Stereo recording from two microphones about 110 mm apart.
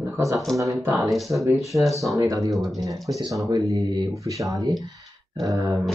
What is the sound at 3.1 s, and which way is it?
Speech, 30° right (ahead or behind).